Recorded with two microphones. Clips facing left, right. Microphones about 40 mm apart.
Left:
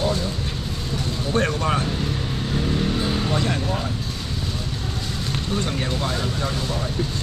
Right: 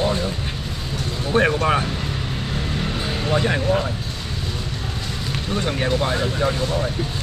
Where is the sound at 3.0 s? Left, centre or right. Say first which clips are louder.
Right 2 dB; centre.